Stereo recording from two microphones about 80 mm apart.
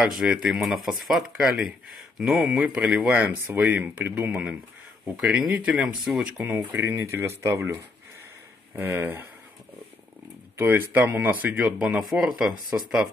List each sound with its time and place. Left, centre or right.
0.0 s speech: centre
0.5 s speech: centre
3.1 s speech: centre
5.8 s speech: centre
6.3 s speech: right
10.6 s speech: right